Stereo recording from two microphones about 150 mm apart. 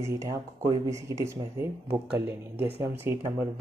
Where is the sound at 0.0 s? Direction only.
20° right (ahead or behind).